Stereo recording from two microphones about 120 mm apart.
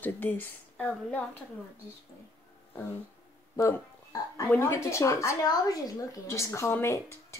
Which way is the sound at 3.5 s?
25° left (ahead or behind).